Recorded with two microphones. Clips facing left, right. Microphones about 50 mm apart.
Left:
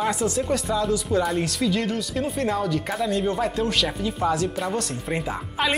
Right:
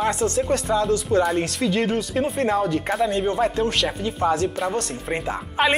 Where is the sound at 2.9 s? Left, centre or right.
Centre.